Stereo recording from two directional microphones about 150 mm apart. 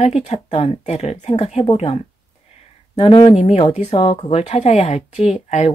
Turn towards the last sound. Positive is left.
turn(degrees=50)  # may be behind; listen again after turning